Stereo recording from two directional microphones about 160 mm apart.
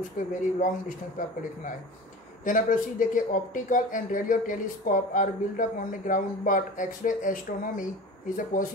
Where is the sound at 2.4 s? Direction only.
55° left (ahead or behind).